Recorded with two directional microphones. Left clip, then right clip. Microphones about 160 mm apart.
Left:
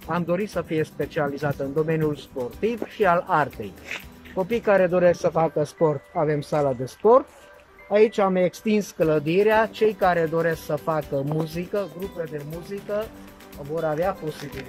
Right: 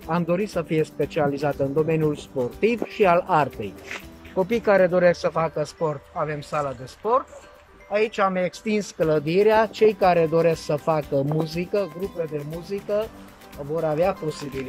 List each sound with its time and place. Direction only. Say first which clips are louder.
0.0 s speech: right 1 dB; centre (ahead or behind); by 5.5 s 15° left (ahead or behind)
5.6 s speech: left 3 dB; 30° left (ahead or behind); by 14.1 s 5° right (ahead or behind)